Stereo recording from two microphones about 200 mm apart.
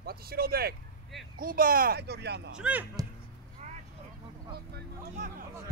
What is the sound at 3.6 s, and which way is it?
Vehicle, 35° right (ahead or behind).